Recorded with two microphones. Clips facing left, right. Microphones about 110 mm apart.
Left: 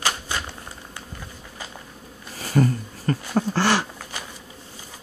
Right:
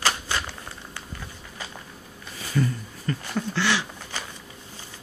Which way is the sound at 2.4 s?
40° left (ahead or behind).